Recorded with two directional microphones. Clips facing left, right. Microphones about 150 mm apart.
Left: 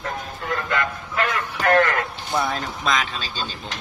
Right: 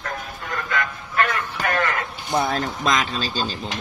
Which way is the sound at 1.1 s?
70° left (ahead or behind).